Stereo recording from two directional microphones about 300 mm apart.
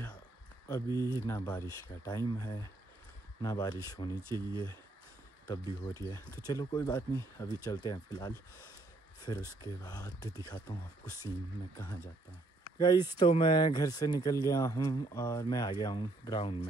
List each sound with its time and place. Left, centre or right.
0.9 s speech: centre
4.2 s speech: centre
5.5 s speech: centre